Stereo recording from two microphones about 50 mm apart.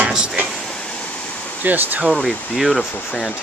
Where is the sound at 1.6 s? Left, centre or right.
Right.